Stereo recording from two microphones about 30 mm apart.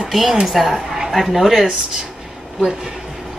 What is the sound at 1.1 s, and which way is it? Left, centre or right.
Speech, centre.